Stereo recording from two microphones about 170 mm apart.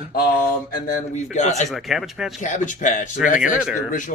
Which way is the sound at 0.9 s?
45° left (ahead or behind).